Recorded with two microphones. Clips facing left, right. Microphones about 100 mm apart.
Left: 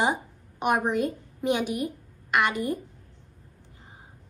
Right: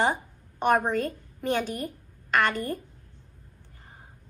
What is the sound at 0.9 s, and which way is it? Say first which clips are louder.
A woman's voice: left 2 dB; 15° left (ahead or behind).